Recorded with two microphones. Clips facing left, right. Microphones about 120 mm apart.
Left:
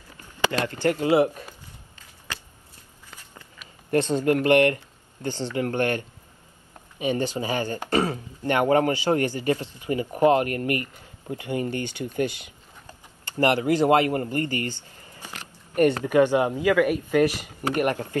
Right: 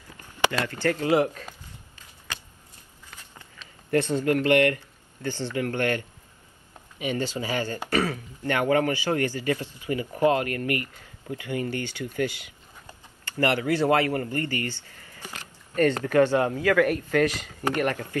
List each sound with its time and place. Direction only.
0.5 s speech: 15° left (ahead or behind)
3.5 s speech: 20° left (ahead or behind)